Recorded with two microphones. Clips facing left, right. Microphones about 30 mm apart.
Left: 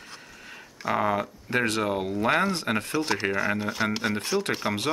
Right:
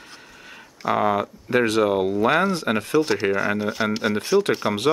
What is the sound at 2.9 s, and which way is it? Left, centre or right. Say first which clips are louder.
Speech: right 8 dB; centre.